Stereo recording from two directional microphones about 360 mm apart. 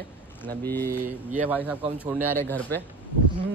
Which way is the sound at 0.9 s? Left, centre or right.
Right.